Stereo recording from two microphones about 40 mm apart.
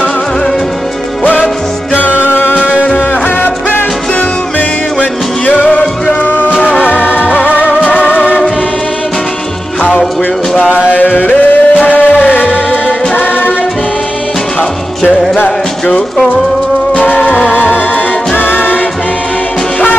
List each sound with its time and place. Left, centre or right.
2.0 s music: left
2.5 s music: left
6.2 s music: left
10.7 s music: right
11.0 s music: left
13.1 s music: left
16.9 s music: left
17.5 s music: left